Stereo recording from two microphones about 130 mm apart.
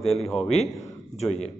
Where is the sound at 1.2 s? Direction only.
60° left (ahead or behind).